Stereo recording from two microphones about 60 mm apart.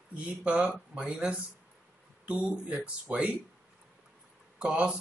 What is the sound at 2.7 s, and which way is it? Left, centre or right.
Speech, centre.